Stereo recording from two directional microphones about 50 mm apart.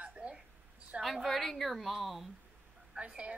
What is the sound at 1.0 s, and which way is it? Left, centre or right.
A woman's voice, centre.